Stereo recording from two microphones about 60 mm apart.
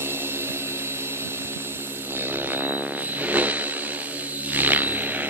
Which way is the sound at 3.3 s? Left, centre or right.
Right.